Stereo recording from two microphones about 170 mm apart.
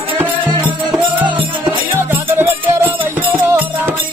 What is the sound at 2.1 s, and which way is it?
Music, 15° right (ahead or behind).